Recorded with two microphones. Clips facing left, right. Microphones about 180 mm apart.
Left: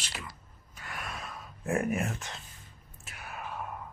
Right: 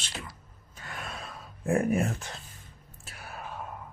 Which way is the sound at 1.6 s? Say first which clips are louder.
Right 4 dB; 35° right (ahead or behind).